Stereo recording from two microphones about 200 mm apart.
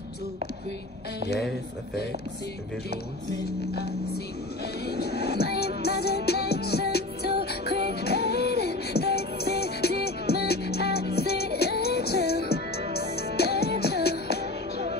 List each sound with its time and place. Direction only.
5.4 s music: 55° left (ahead or behind)
14.4 s music: 35° right (ahead or behind)